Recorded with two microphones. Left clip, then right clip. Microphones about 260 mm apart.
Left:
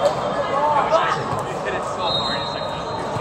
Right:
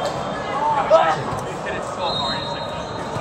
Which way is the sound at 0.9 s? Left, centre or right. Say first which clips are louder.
Right 7 dB; centre.